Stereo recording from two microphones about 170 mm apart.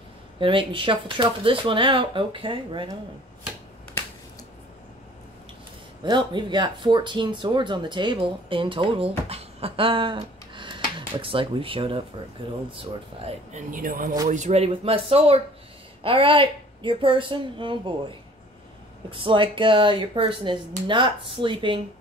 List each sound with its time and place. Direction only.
0.4 s speech: 30° right (ahead or behind)
6.0 s speech: 25° right (ahead or behind)
13.2 s speech: 45° right (ahead or behind)
14.3 s speech: 40° right (ahead or behind)